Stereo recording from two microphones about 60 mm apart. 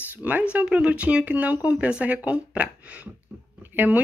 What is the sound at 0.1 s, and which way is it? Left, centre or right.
A woman's voice, right.